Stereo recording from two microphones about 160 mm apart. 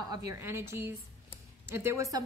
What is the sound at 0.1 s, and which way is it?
A woman's voice, 20° right (ahead or behind).